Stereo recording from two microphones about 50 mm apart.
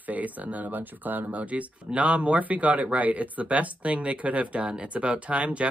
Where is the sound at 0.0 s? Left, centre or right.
Right.